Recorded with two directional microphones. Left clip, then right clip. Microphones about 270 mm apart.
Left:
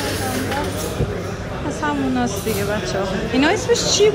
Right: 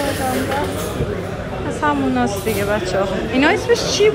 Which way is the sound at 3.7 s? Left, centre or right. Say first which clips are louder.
Even; left.